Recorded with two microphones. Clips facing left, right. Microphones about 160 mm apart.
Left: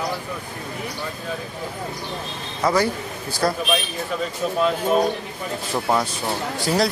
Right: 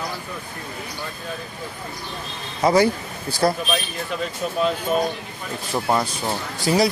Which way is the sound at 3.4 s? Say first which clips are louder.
Right 2 dB; 20° right (ahead or behind).